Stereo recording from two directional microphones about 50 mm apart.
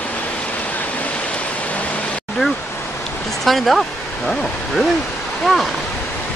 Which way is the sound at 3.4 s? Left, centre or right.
Centre.